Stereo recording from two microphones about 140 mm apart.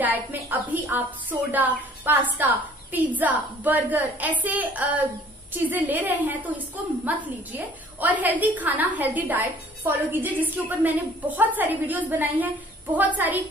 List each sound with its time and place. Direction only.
0.0 s a woman's voice: 10° right (ahead or behind)